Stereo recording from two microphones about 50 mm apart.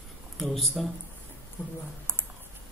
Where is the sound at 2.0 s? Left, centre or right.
Right.